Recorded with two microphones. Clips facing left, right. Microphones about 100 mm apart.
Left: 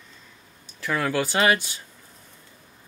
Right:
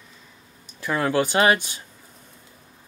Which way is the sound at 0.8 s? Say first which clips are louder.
Right 3 dB; 20° right (ahead or behind).